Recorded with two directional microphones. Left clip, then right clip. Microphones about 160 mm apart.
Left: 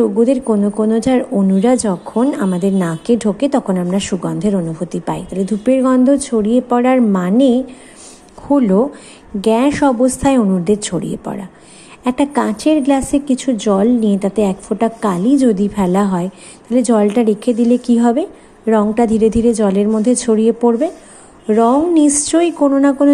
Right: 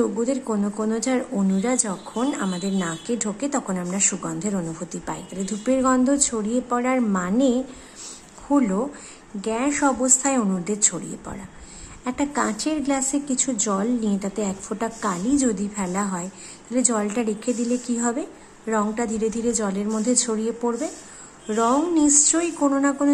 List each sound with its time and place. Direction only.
0.0 s a woman's voice: 25° left (ahead or behind)